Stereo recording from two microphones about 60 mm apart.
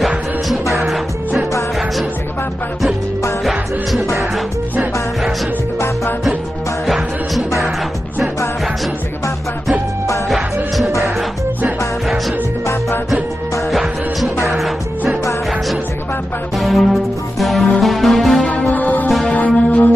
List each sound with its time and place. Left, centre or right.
0.5 s music: centre
3.4 s music: centre
13.7 s music: centre
16.5 s music: centre
18.4 s music: left